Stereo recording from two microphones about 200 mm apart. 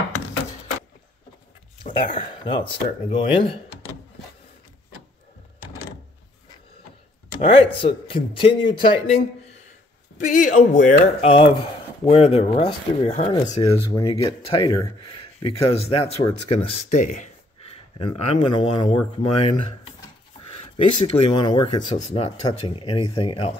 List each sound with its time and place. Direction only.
1.9 s speech: 40° left (ahead or behind)
2.4 s speech: 25° left (ahead or behind)
7.5 s speech: 30° left (ahead or behind)
10.1 s speech: 40° left (ahead or behind)
11.2 s speech: 25° left (ahead or behind)